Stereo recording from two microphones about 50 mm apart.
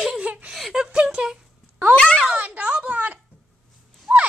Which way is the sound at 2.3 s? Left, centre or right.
Right.